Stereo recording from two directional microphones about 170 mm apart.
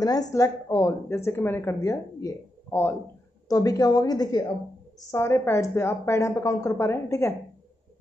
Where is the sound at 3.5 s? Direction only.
20° left (ahead or behind).